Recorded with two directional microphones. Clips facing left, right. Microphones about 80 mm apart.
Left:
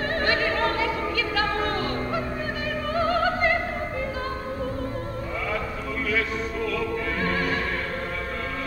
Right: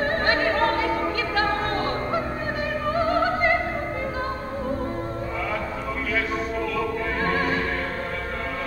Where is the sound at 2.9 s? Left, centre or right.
Right.